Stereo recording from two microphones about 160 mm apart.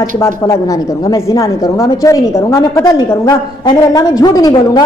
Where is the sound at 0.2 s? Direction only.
20° left (ahead or behind).